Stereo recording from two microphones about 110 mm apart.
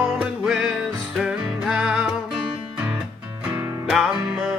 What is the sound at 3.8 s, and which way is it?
Music, 5° right (ahead or behind).